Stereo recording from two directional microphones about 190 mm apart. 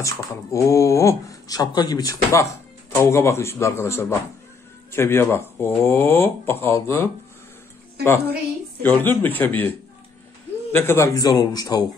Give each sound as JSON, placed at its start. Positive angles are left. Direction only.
{"t": 0.0, "sound": "speech", "side_deg": 15}
{"t": 8.8, "sound": "speech", "side_deg": 10}